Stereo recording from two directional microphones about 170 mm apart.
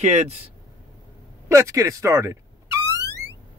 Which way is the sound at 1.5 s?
15° right (ahead or behind).